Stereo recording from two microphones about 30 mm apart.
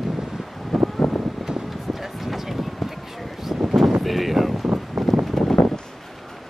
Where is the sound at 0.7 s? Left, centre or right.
Centre.